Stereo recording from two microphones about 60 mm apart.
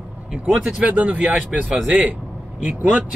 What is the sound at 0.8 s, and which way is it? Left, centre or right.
Speech, right.